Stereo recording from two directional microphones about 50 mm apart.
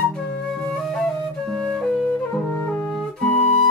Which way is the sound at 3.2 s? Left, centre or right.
Centre.